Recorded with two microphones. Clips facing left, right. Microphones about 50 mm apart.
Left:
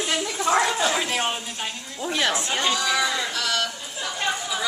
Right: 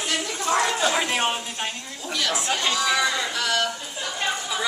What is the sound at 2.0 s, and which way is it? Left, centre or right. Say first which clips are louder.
Speech: left 4 dB; left.